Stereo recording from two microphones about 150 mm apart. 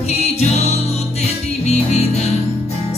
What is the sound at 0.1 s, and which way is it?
Music, 45° left (ahead or behind).